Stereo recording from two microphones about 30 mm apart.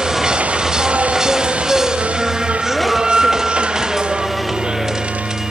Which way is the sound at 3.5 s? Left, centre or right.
Right.